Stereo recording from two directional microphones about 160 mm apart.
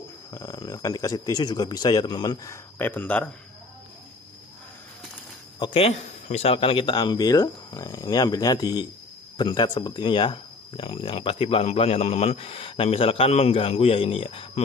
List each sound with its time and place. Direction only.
0.3 s speech: 20° left (ahead or behind)
5.6 s speech: 35° left (ahead or behind)